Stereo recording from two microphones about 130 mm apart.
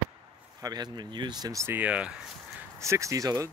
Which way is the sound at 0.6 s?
30° right (ahead or behind).